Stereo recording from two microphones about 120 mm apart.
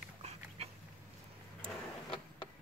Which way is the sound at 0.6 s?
60° right (ahead or behind).